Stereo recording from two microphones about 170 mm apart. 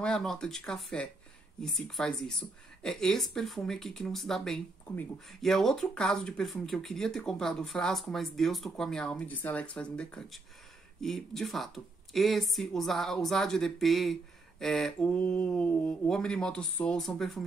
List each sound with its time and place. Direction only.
0.0 s speech: 5° left (ahead or behind)